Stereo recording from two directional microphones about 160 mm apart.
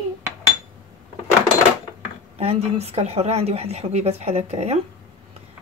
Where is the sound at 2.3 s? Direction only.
40° right (ahead or behind).